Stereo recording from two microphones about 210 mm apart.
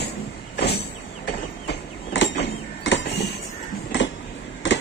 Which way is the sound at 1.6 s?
55° left (ahead or behind).